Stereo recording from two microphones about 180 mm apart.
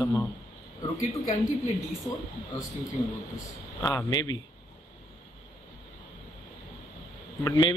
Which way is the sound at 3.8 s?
20° left (ahead or behind).